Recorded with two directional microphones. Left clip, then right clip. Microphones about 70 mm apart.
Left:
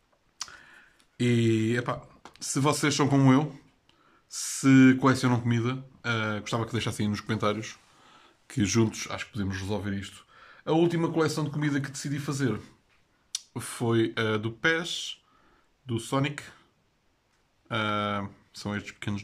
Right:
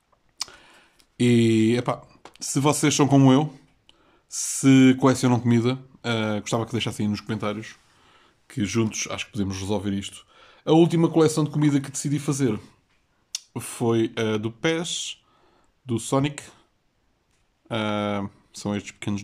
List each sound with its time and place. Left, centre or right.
0.4 s a sound: right
2.3 s speech: right
5.5 s speech: right
6.0 s speech: right
6.7 s speech: right; by 8.8 s centre
8.9 s speech: right
17.6 s speech: right